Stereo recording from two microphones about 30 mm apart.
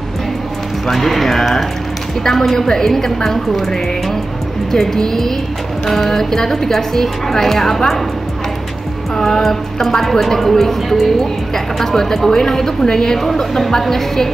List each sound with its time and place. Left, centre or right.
0.8 s a woman's voice: centre
4.7 s a woman's voice: centre
9.1 s a woman's voice: centre